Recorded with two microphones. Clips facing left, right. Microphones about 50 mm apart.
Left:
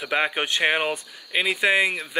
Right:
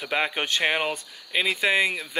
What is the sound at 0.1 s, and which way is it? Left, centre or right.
Speech, left.